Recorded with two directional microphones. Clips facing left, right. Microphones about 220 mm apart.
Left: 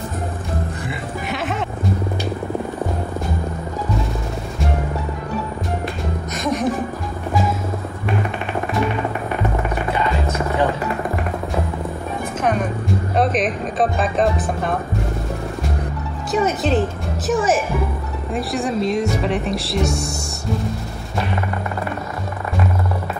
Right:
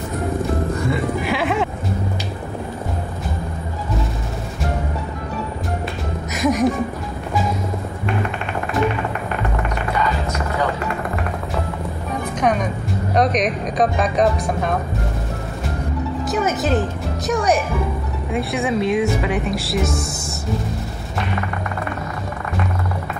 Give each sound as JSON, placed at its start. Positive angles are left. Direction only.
{"t": 1.2, "sound": "music", "side_deg": 0}
{"t": 6.3, "sound": "music", "side_deg": 0}
{"t": 9.9, "sound": "music", "side_deg": 30}
{"t": 12.4, "sound": "music", "side_deg": 0}
{"t": 13.1, "sound": "speech", "side_deg": 5}
{"t": 16.3, "sound": "speech", "side_deg": 0}